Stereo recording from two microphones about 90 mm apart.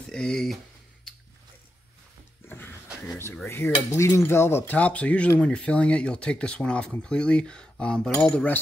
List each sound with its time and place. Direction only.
0.1 s speech: 5° left (ahead or behind)
2.4 s door: 25° left (ahead or behind)
3.4 s speech: 30° left (ahead or behind); by 8.5 s 10° left (ahead or behind)